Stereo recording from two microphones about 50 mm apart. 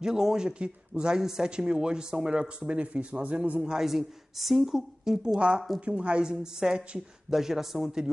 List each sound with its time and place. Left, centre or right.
0.0 s speech: centre
1.1 s speech: centre; by 3.7 s right
3.7 s speech: centre
5.8 s a woman's voice: right
6.3 s speech: centre